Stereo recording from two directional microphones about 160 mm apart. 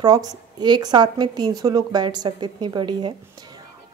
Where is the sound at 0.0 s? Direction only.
25° right (ahead or behind).